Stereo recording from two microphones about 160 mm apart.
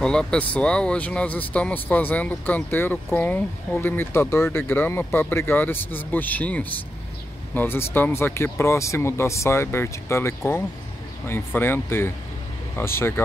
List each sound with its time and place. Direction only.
0.0 s speech: 5° left (ahead or behind)